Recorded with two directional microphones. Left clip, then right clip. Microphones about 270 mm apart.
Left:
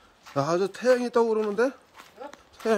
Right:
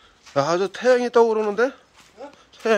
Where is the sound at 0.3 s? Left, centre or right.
Centre.